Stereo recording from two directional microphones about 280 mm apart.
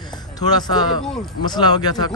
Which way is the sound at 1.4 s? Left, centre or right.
Centre.